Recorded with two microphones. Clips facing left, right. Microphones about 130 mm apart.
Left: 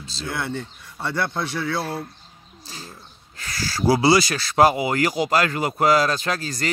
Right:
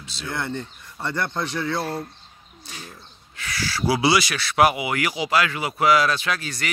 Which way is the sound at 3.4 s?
40° left (ahead or behind).